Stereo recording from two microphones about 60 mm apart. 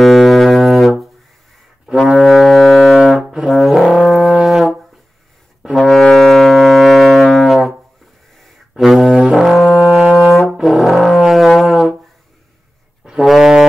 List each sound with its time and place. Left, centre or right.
0.0 s music: centre
2.0 s brass instrument: centre
4.2 s brass instrument: centre
4.5 s brass instrument: centre
5.8 s music: centre
8.7 s music: centre
9.3 s brass instrument: centre
13.2 s brass instrument: centre